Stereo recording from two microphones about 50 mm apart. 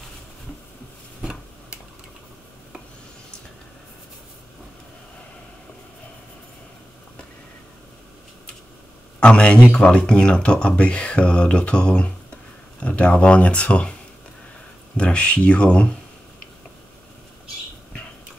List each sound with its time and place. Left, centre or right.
9.2 s speech: centre
15.0 s speech: left